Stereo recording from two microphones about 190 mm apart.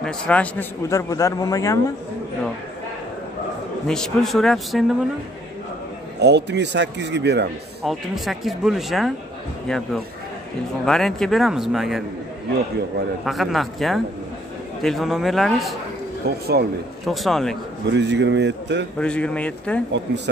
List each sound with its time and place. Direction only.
0.0 s a man's voice: 5° left (ahead or behind)
3.8 s speech: 5° left (ahead or behind)
6.1 s speech: 65° right (ahead or behind)
7.8 s speech: centre (ahead or behind)
13.2 s speech: centre (ahead or behind)
16.3 s speech: 55° right (ahead or behind)
17.0 s speech: centre (ahead or behind)
17.9 s speech: 65° right (ahead or behind)
18.9 s a man's voice: 5° left (ahead or behind)